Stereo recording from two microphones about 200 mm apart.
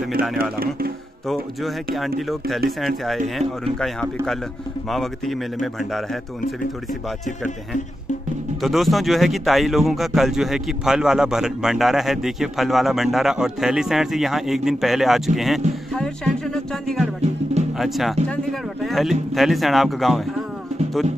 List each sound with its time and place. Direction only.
0.4 s speech: 50° right (ahead or behind)
2.0 s speech: centre (ahead or behind)
4.8 s speech: centre (ahead or behind)
8.5 s speech: centre (ahead or behind)